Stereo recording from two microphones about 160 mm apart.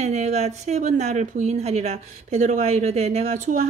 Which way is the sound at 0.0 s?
45° right (ahead or behind).